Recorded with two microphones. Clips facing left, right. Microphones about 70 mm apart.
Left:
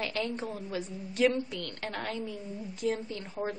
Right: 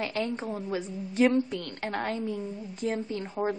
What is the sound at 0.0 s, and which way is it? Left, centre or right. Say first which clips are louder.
A woman's voice: right 3 dB; right.